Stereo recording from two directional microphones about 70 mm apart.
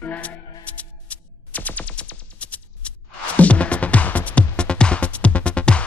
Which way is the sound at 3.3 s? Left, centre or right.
Centre.